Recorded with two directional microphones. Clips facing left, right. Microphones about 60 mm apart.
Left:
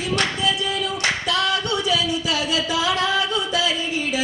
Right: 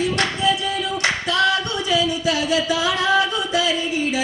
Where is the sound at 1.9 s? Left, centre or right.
Right.